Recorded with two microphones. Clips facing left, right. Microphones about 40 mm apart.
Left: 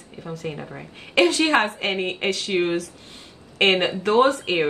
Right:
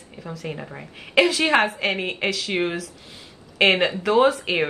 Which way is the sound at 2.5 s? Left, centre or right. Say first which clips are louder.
Left 2 dB; centre.